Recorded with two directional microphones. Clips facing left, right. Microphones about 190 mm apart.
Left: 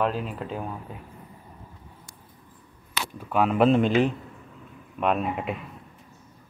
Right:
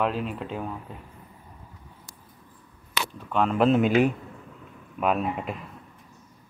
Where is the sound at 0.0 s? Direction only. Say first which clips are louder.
Even; centre (ahead or behind).